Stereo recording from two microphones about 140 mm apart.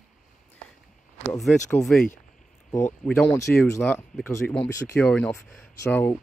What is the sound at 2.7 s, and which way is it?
Speech, 15° left (ahead or behind).